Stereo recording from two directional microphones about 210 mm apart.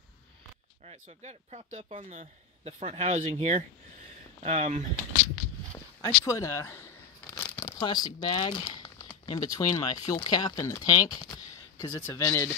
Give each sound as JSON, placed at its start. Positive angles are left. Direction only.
{"t": 0.8, "sound": "speech", "side_deg": -30}
{"t": 6.0, "sound": "a man's voice", "side_deg": 15}